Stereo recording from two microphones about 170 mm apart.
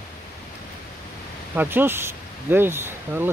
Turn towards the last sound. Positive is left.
turn(degrees=-15)  # may be behind; listen again after turning